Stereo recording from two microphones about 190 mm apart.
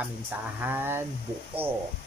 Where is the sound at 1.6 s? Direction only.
30° right (ahead or behind).